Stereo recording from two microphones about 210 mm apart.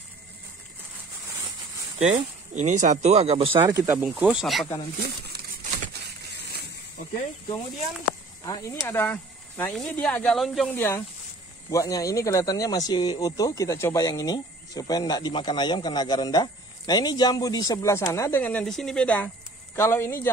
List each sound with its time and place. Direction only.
2.0 s speech: 35° right (ahead or behind)
3.5 s speech: 15° right (ahead or behind)
8.5 s speech: 15° left (ahead or behind)
10.7 s speech: 10° left (ahead or behind)